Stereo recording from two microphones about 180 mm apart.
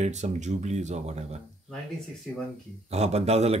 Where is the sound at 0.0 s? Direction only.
40° right (ahead or behind).